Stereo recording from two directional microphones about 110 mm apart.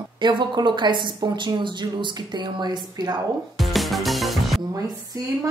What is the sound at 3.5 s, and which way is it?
Music, centre (ahead or behind).